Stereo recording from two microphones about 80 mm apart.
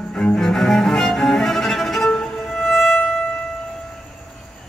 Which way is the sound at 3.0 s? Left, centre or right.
Centre.